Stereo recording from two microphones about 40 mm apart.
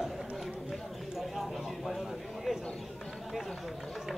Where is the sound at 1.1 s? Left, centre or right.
Centre.